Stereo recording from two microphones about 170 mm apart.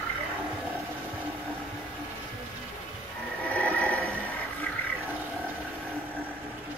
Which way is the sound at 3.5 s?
10° left (ahead or behind).